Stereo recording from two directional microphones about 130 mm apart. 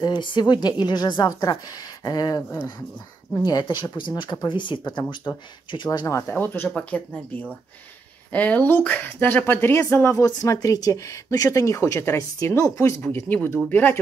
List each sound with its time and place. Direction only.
0.0 s speech: 35° left (ahead or behind)
5.9 s speech: 25° left (ahead or behind)